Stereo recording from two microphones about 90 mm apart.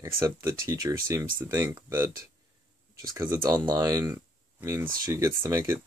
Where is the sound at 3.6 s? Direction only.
45° right (ahead or behind).